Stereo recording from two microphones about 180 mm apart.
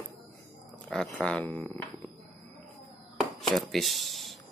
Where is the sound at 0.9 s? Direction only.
5° left (ahead or behind).